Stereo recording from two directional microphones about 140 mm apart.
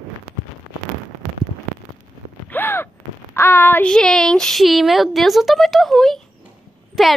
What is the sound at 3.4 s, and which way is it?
A woman's voice, 15° left (ahead or behind).